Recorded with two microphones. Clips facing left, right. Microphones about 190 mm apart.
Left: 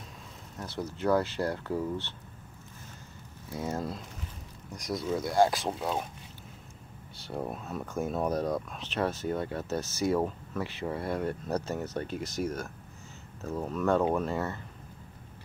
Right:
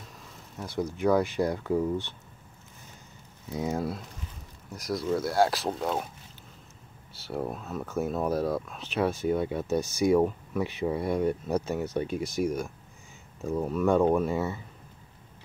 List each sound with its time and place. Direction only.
0.6 s speech: 15° right (ahead or behind)
3.4 s speech: 15° right (ahead or behind)
4.7 s speech: centre (ahead or behind)
7.2 s speech: 5° right (ahead or behind)